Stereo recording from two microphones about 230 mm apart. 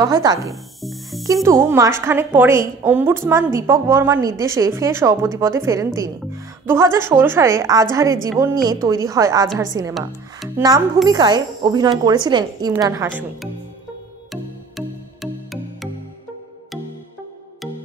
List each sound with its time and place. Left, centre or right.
0.0 s a woman's voice: centre
10.4 s music: centre
11.1 s a woman's voice: centre
14.8 s music: centre